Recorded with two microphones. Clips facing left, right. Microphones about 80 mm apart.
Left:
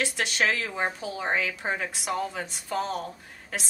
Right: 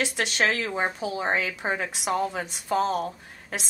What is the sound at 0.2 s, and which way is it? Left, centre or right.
A woman's voice, right.